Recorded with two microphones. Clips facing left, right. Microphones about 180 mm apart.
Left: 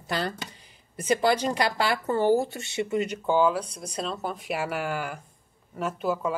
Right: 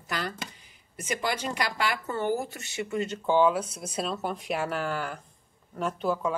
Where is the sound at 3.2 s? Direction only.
Centre (ahead or behind).